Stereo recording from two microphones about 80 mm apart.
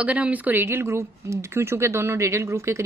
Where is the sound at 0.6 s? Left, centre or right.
Right.